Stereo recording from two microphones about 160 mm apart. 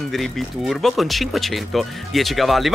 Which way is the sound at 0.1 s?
Centre (ahead or behind).